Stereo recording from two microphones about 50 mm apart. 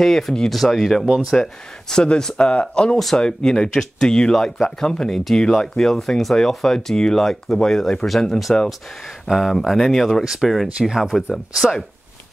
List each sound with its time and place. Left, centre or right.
0.0 s speech: centre
1.0 s speech: centre
1.4 s speech: centre
10.2 s speech: centre